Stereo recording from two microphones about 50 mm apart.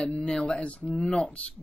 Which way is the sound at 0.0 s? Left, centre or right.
Centre.